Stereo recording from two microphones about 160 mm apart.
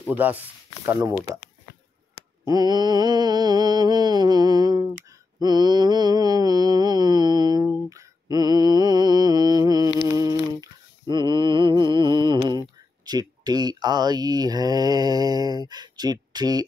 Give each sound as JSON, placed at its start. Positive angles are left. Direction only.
{"t": 0.0, "sound": "speech", "side_deg": -10}
{"t": 2.4, "sound": "mantra", "side_deg": -25}
{"t": 13.0, "sound": "speech", "side_deg": -25}